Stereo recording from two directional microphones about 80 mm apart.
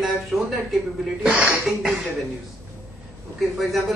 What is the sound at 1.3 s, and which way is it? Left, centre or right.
Speech, centre.